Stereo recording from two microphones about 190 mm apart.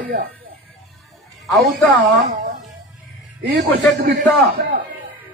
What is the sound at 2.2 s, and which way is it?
Speech, 45° right (ahead or behind).